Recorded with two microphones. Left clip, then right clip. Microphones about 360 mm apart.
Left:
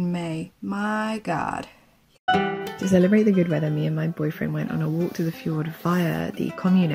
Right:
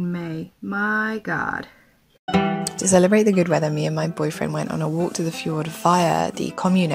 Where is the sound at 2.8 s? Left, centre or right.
Centre.